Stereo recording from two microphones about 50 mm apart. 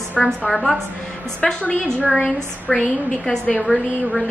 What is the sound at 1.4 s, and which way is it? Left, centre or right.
Speech, centre.